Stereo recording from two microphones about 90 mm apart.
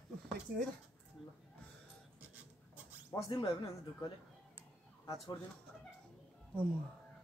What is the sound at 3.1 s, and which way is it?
Speech, 35° left (ahead or behind).